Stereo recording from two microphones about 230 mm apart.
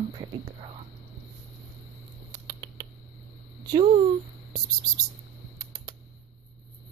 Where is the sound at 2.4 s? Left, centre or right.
Centre.